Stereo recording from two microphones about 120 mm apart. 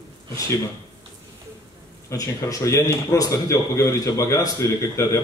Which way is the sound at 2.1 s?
30° left (ahead or behind).